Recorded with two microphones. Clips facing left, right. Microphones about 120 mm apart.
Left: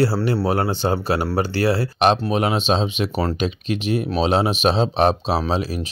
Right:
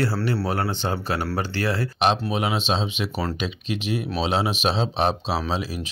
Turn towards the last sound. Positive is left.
turn(degrees=45)  # may be behind; listen again after turning